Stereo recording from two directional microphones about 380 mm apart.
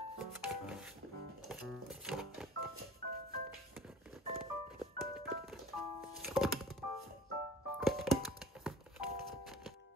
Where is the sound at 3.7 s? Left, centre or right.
Centre.